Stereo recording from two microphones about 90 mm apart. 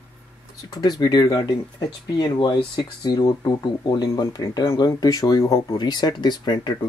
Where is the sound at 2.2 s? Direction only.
55° left (ahead or behind).